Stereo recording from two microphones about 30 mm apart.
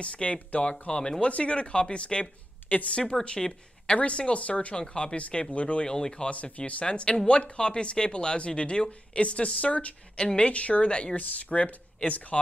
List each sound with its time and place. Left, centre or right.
0.0 s speech: left
1.3 s speech: left
2.7 s a woman's voice: left
3.1 s speech: centre
4.0 s speech: left
4.8 s speech: left
5.9 s speech: left
6.3 s speech: left
10.1 s speech: left
10.5 s speech: left
11.1 s speech: left